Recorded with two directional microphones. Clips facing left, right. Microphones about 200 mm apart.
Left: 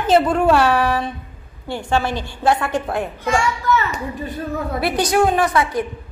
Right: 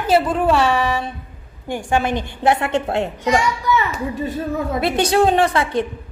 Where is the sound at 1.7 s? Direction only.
15° right (ahead or behind).